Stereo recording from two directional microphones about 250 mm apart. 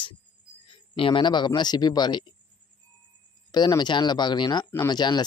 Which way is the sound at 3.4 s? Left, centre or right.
Centre.